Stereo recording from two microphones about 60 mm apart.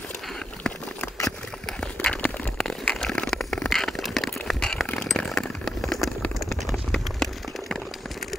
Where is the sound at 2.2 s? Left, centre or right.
Centre.